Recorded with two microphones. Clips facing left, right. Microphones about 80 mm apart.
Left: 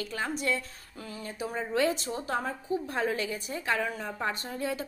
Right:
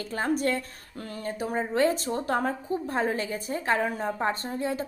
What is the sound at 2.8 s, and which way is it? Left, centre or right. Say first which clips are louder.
A woman's voice: right 5 dB; right.